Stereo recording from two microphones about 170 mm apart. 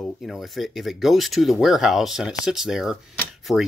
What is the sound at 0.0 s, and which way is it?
Speech, centre (ahead or behind).